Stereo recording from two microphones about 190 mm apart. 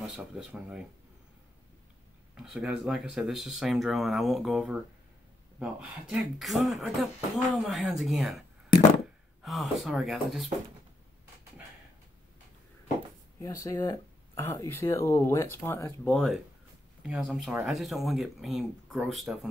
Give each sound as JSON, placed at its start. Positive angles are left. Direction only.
{"t": 0.0, "sound": "speech", "side_deg": -5}
{"t": 2.3, "sound": "speech", "side_deg": -5}
{"t": 13.4, "sound": "speech", "side_deg": 15}